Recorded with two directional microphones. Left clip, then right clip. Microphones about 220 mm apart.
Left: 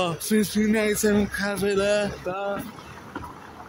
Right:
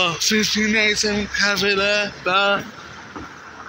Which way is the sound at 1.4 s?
15° left (ahead or behind).